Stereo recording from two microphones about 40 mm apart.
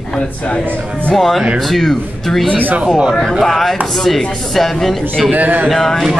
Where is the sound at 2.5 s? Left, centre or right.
Right.